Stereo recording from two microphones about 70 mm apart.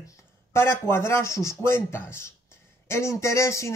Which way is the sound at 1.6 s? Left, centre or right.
Left.